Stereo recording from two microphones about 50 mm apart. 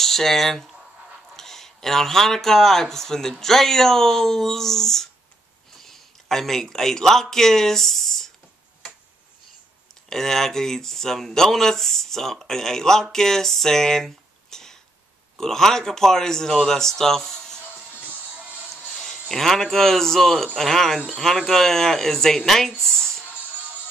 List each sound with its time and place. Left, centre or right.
0.0 s a man's voice: centre
10.0 s speech: centre
17.9 s music: right
18.3 s music: right
18.9 s speech: centre
22.8 s a sound: centre